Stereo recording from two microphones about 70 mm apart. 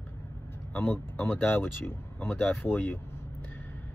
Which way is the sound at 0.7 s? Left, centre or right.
Left.